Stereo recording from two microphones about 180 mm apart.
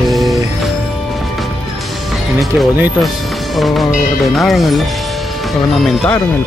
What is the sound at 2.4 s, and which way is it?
Speech, 5° right (ahead or behind).